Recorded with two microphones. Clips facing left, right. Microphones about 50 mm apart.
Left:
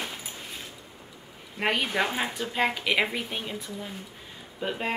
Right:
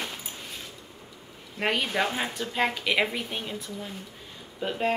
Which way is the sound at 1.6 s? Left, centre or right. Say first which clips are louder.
Even; centre.